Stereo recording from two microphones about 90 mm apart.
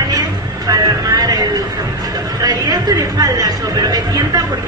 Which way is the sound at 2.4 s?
45° right (ahead or behind).